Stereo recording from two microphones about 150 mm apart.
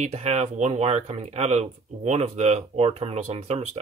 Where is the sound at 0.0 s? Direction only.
45° right (ahead or behind).